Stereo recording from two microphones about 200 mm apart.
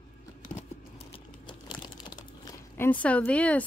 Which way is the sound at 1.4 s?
20° left (ahead or behind).